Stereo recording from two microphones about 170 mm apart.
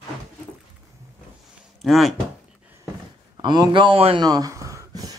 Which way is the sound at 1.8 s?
Centre (ahead or behind).